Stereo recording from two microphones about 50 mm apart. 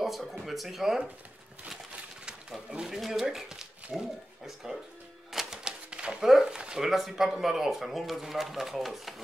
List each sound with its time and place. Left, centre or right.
0.0 s speech: centre
2.9 s speech: centre
5.3 s typewriter: centre
5.6 s typewriter: centre
6.2 s speech: centre
6.6 s a sound: centre
6.9 s speech: centre